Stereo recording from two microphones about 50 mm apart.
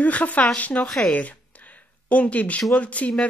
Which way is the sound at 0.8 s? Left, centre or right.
Centre.